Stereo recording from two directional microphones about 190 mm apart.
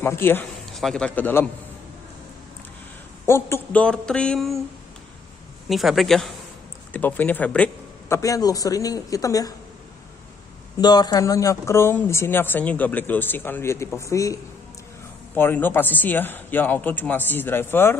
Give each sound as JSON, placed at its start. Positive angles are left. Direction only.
{"t": 0.0, "sound": "speech", "side_deg": 10}
{"t": 3.3, "sound": "speech", "side_deg": 15}
{"t": 5.7, "sound": "speech", "side_deg": 0}
{"t": 10.8, "sound": "speech", "side_deg": 20}